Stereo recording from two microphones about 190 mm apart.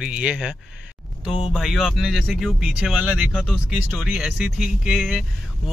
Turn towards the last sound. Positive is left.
turn(degrees=0)  # may be behind; listen again after turning